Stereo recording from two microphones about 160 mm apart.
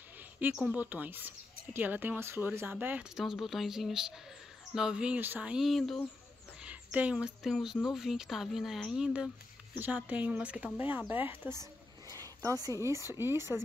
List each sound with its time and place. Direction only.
0.4 s speech: 10° right (ahead or behind)